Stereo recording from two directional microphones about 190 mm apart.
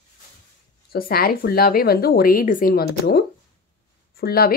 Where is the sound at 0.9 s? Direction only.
50° left (ahead or behind).